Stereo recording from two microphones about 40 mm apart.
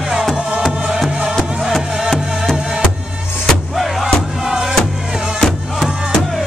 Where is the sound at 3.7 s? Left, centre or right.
Centre.